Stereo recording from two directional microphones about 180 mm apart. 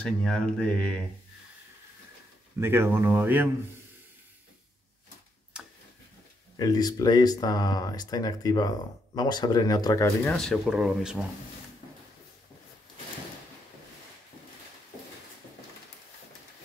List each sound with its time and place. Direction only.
0.0 s speech: 5° left (ahead or behind)
2.6 s speech: 15° right (ahead or behind)
6.5 s speech: 20° left (ahead or behind)
10.3 s speech: 5° left (ahead or behind)